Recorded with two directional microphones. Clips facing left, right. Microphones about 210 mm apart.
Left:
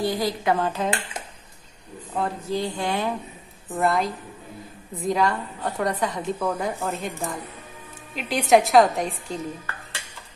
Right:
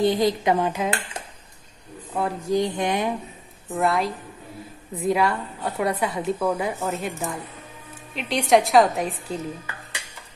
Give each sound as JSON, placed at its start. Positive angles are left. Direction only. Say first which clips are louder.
{"t": 0.0, "sound": "a woman's voice", "louder": "right 4 dB", "side_deg": -20}
{"t": 2.1, "sound": "a woman's voice", "louder": "right 3 dB", "side_deg": -15}
{"t": 3.7, "sound": "a woman's voice", "louder": "even", "side_deg": 0}